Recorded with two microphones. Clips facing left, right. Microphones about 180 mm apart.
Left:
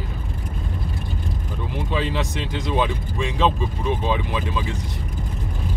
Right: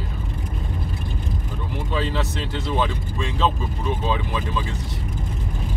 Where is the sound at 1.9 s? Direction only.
15° left (ahead or behind).